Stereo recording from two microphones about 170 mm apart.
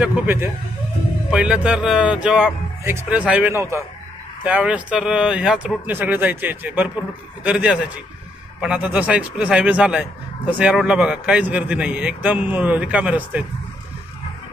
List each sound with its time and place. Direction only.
0.0 s a man's voice: 10° right (ahead or behind)